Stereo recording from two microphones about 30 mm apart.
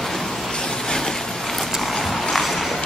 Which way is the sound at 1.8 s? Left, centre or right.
Centre.